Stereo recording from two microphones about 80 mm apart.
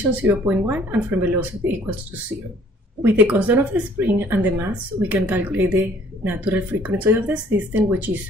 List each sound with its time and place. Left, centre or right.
0.1 s a woman's voice: right
3.0 s a woman's voice: right